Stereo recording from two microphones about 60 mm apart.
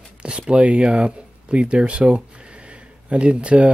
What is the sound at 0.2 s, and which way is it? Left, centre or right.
Speech, centre.